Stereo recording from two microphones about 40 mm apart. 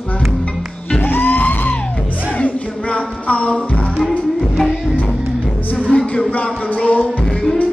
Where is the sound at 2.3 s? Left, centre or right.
Left.